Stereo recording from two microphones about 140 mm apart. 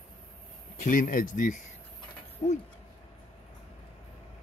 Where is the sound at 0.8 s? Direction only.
75° left (ahead or behind).